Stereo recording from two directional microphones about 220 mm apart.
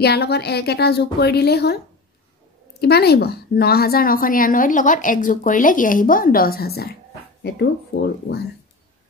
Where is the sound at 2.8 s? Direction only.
45° left (ahead or behind).